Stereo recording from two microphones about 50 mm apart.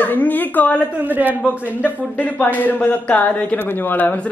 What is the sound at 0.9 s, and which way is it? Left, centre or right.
Speech, right.